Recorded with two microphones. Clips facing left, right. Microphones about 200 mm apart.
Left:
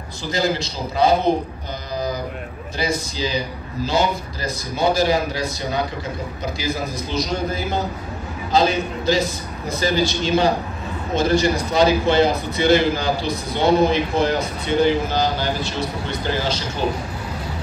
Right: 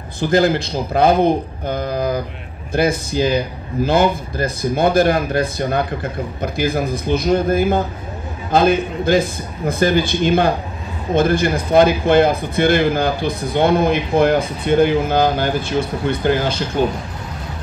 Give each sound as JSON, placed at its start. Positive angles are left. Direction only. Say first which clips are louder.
{"t": 0.2, "sound": "a man's voice", "louder": "right 7 dB", "side_deg": -55}